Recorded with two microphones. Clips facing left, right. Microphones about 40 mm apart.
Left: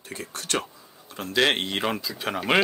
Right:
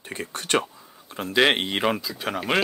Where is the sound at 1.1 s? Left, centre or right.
Centre.